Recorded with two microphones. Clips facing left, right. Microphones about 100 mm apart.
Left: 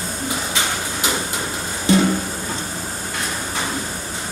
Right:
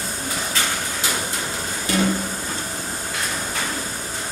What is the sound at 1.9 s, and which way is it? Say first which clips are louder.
Music: left 6 dB; 25° left (ahead or behind).